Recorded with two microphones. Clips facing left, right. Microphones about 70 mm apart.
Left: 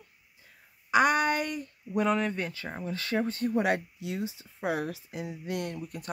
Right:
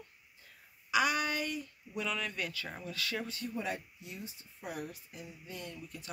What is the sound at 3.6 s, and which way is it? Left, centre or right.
Speech, left.